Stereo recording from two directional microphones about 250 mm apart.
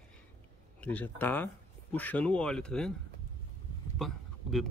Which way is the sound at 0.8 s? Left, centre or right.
Centre.